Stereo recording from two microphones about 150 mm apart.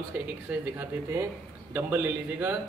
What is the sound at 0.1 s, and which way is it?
A man's voice, 10° right (ahead or behind).